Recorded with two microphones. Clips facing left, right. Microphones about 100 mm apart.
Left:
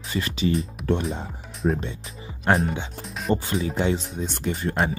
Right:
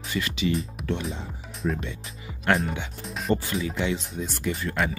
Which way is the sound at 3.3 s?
30° left (ahead or behind).